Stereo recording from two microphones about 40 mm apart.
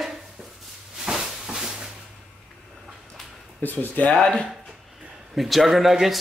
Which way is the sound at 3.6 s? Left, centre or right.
Left.